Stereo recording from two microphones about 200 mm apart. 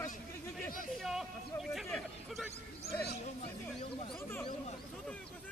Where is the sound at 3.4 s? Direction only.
35° left (ahead or behind).